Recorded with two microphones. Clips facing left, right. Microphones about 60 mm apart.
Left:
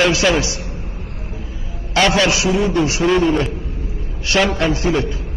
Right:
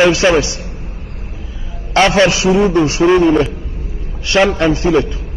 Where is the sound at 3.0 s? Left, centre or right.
Centre.